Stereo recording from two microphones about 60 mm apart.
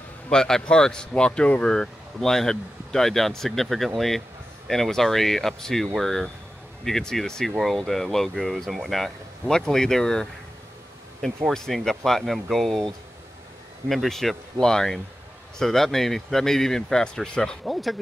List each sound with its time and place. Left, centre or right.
0.3 s speech: centre
17.6 s speech: centre